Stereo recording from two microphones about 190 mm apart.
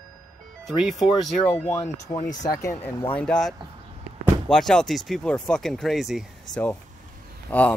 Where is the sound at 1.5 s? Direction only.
15° left (ahead or behind).